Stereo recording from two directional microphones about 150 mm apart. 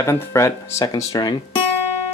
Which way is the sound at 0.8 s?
30° left (ahead or behind).